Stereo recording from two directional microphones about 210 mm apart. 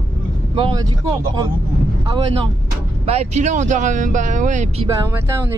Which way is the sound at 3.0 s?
30° right (ahead or behind).